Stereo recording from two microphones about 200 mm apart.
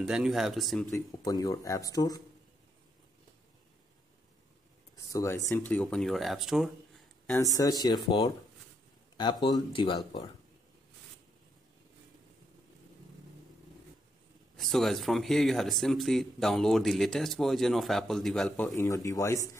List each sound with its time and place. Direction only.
0.0 s speech: centre (ahead or behind)
0.8 s speech: 15° left (ahead or behind)
4.9 s speech: 15° left (ahead or behind)
5.7 s speech: 5° left (ahead or behind)
7.2 s speech: 15° left (ahead or behind)
14.6 s speech: centre (ahead or behind)